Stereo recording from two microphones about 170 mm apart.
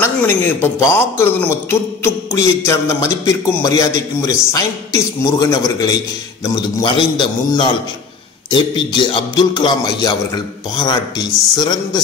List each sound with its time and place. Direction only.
0.0 s a man's voice: 15° left (ahead or behind)